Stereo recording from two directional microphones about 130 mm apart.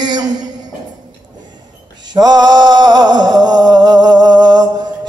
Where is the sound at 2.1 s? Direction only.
30° right (ahead or behind).